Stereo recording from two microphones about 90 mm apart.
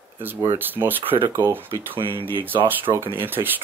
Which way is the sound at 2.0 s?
80° right.